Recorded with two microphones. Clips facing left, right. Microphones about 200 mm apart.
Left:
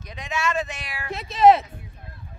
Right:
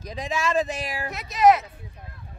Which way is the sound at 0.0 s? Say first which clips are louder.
Right 1 dB; 35° right (ahead or behind).